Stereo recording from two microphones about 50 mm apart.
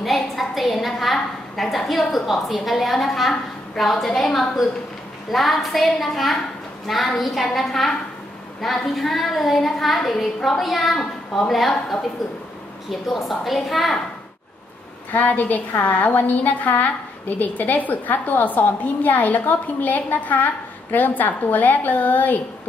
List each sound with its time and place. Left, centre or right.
0.0 s a woman's voice: centre
15.1 s a woman's voice: left